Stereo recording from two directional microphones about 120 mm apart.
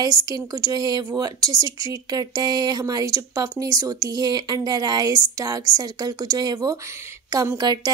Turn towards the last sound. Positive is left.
turn(degrees=-30)  # may be behind; listen again after turning